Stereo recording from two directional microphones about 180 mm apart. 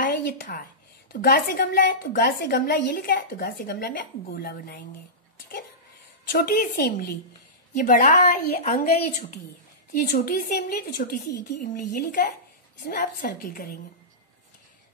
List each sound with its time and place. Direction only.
0.0 s a sound: 50° left (ahead or behind)
1.1 s a woman's voice: 55° left (ahead or behind)
6.3 s a woman's voice: 55° left (ahead or behind)
7.7 s speech: 45° left (ahead or behind)
9.9 s speech: 50° left (ahead or behind)